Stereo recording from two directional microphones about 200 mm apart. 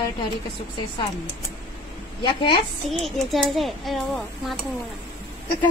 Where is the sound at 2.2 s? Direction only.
25° left (ahead or behind).